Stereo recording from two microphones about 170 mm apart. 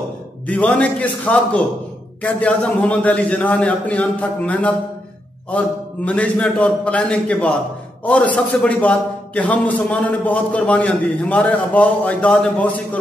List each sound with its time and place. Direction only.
0.5 s a man's voice: 5° left (ahead or behind)
6.0 s a man's voice: 10° left (ahead or behind)